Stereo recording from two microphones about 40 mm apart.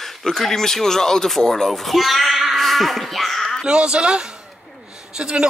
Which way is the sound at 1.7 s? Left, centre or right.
Centre.